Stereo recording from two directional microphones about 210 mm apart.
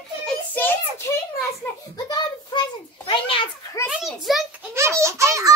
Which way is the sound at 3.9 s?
Centre (ahead or behind).